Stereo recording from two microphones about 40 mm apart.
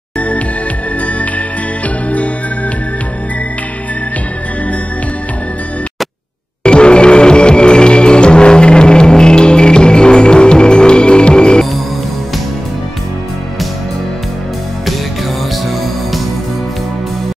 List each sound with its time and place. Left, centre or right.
6.6 s music: left